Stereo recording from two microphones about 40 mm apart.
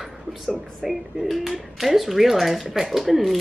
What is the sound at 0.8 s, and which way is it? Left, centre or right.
Speech, centre.